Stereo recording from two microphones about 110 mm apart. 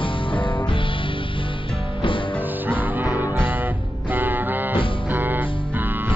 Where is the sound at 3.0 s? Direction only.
15° right (ahead or behind).